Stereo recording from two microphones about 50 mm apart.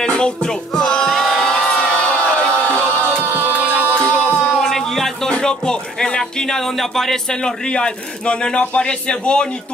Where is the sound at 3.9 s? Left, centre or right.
Centre.